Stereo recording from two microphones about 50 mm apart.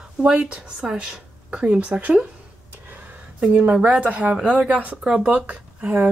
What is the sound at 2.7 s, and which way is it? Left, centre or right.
Gasp, right.